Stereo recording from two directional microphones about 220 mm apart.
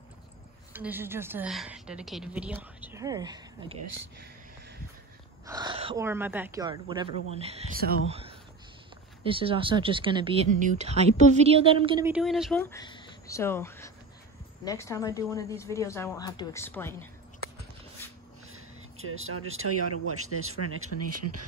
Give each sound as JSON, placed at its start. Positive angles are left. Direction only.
{"t": 0.7, "sound": "a woman's voice", "side_deg": -10}
{"t": 5.5, "sound": "a sound", "side_deg": -20}
{"t": 5.9, "sound": "a woman's voice", "side_deg": -10}
{"t": 7.7, "sound": "speech", "side_deg": -45}
{"t": 8.1, "sound": "a sound", "side_deg": -25}
{"t": 9.2, "sound": "speech", "side_deg": -25}
{"t": 12.0, "sound": "speech", "side_deg": -5}
{"t": 12.7, "sound": "a woman's voice", "side_deg": 20}
{"t": 18.5, "sound": "speech", "side_deg": -70}